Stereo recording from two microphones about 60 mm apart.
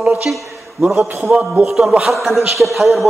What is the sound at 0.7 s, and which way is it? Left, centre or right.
Speech, right.